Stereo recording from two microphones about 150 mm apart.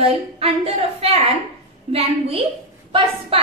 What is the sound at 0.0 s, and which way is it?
A woman's voice, 40° right (ahead or behind).